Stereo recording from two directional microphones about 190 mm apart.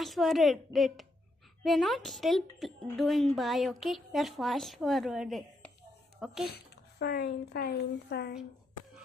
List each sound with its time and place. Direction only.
0.0 s a woman's voice: centre (ahead or behind)
6.5 s speech: 60° left (ahead or behind)